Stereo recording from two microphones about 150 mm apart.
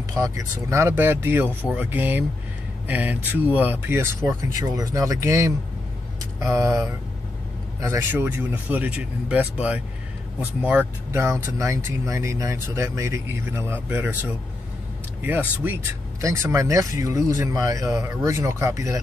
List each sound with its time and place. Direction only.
0.1 s speech: 20° right (ahead or behind)